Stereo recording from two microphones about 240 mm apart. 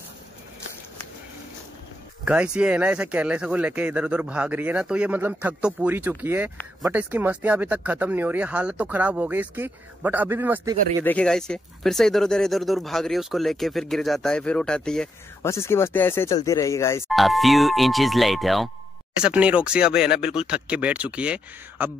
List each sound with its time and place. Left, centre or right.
2.2 s speech: centre
11.1 s speech: centre
17.1 s speech: centre